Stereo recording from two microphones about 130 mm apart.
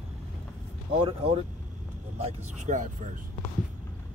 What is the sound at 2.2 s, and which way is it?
Speech, 55° right (ahead or behind).